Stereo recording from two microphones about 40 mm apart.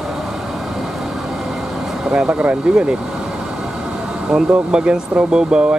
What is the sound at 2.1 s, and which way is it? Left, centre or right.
Speech, right.